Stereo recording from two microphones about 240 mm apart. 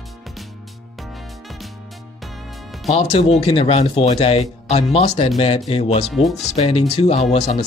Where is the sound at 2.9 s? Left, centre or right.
Left.